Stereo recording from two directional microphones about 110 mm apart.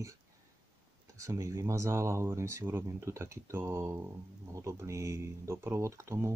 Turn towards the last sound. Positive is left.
turn(degrees=-25)  # may be behind; listen again after turning